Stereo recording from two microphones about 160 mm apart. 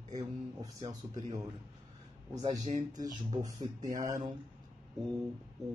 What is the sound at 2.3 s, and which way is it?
Speech, 25° right (ahead or behind).